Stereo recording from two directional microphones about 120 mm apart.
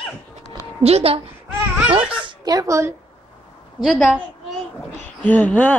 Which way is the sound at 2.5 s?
30° right (ahead or behind).